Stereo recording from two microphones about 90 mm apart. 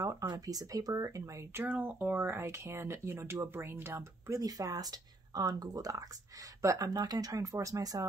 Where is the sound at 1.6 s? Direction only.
20° right (ahead or behind).